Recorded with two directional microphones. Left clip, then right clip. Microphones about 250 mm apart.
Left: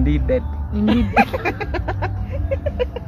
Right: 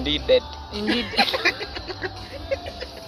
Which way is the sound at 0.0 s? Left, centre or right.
Centre.